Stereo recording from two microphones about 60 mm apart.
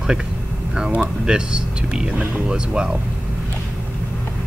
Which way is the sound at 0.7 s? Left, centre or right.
Centre.